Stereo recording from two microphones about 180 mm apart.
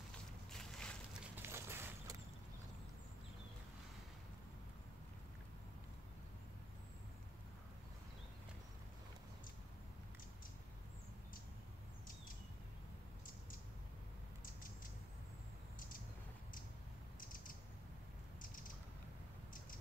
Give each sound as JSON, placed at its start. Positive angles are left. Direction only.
{"t": 0.5, "sound": "a sound", "side_deg": 5}
{"t": 1.3, "sound": "vehicle", "side_deg": -15}
{"t": 14.4, "sound": "creak", "side_deg": 50}